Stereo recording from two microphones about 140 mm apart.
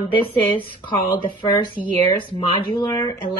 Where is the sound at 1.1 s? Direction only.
35° left (ahead or behind).